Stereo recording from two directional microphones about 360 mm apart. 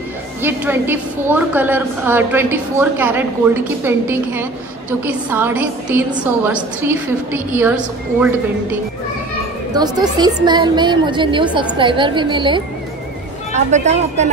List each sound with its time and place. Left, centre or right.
0.4 s a woman's voice: centre
9.8 s a woman's voice: centre